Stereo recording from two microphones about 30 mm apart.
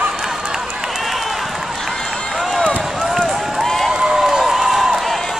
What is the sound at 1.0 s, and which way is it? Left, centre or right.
Run, centre.